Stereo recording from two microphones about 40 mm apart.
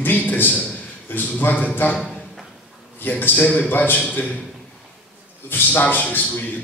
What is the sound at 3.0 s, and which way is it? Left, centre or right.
Speech, left.